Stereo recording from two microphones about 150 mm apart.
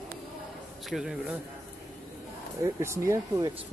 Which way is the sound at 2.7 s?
20° right (ahead or behind).